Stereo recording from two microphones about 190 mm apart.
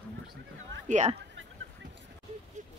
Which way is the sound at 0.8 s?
40° right (ahead or behind).